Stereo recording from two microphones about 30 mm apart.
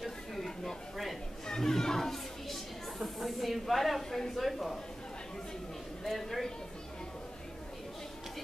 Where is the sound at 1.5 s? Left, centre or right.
Centre.